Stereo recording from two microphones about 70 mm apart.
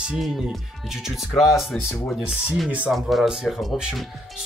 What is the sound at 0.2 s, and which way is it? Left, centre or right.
Speech, centre.